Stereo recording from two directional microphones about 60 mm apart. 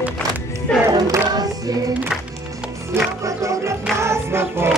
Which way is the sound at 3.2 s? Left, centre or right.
Right.